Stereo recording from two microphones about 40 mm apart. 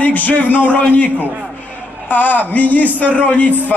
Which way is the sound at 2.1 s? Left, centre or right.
Left.